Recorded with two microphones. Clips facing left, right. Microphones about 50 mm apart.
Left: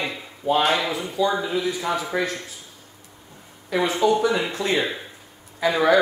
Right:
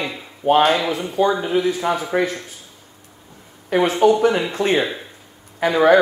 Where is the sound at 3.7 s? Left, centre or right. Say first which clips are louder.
Right 5 dB; right.